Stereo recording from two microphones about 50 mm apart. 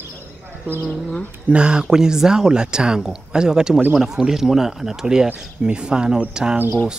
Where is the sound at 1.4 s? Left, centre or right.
Centre.